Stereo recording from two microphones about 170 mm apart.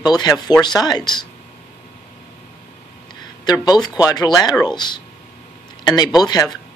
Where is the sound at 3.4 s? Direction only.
25° left (ahead or behind).